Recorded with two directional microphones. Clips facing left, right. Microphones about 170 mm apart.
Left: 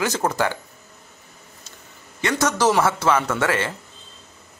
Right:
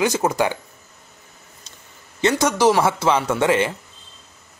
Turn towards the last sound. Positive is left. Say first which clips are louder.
# right 4 dB
turn(degrees=-15)  # may be behind; listen again after turning